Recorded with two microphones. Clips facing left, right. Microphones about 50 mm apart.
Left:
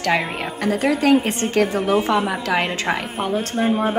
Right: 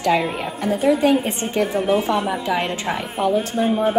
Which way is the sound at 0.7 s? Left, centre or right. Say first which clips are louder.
Right 2 dB; left.